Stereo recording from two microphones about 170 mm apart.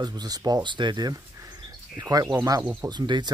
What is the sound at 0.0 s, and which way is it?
Speech, 25° right (ahead or behind).